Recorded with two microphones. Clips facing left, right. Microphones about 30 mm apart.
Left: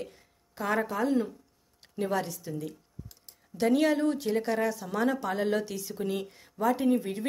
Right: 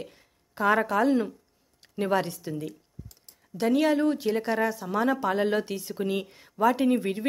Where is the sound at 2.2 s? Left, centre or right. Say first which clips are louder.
Right 3 dB; right.